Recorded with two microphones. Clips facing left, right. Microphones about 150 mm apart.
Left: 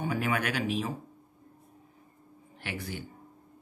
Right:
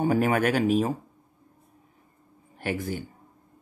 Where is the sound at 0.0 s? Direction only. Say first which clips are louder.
Right 8 dB; 45° right (ahead or behind).